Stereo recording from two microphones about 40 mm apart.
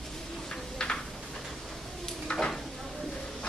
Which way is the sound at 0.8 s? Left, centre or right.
Left.